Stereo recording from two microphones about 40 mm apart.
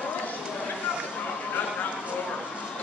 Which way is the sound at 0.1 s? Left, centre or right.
Left.